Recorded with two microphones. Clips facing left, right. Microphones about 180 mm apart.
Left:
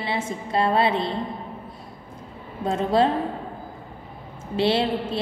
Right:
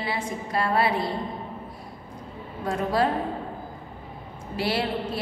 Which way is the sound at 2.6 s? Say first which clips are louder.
Left 4 dB; 25° left (ahead or behind).